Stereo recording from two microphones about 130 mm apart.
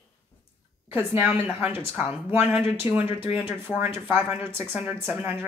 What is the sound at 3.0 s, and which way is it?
Speech, 45° left (ahead or behind).